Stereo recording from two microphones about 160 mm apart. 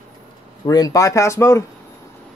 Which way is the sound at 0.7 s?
25° left (ahead or behind).